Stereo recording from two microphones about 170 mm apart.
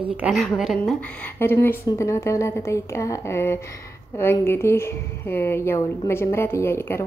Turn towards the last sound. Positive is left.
turn(degrees=15)  # may be behind; listen again after turning